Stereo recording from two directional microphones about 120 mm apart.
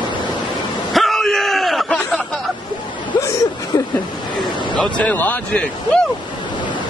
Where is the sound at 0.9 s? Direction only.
Centre (ahead or behind).